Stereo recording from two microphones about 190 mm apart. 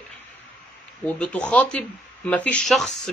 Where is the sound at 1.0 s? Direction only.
5° left (ahead or behind).